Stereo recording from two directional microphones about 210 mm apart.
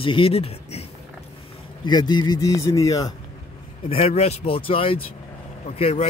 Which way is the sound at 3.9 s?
25° left (ahead or behind).